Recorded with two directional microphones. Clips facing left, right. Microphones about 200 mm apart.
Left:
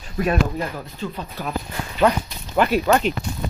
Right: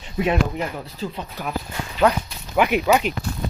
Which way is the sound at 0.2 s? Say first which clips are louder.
Even; 20° right (ahead or behind).